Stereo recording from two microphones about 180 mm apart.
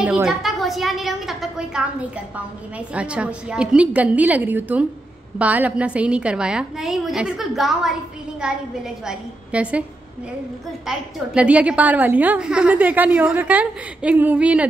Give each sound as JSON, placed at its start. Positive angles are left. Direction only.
{"t": 0.0, "sound": "a woman's voice", "side_deg": -5}
{"t": 10.9, "sound": "a woman's voice", "side_deg": -5}